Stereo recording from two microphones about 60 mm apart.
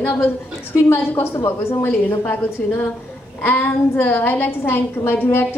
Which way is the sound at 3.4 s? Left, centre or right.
Left.